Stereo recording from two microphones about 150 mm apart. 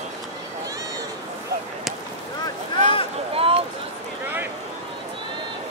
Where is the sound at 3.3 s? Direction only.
40° right (ahead or behind).